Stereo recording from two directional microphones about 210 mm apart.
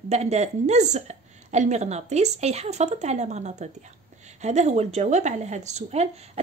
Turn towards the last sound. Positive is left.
turn(degrees=-30)  # may be behind; listen again after turning